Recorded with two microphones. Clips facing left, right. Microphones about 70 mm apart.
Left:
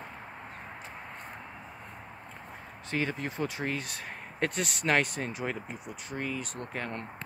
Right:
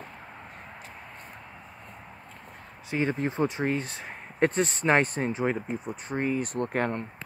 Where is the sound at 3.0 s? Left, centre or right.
Right.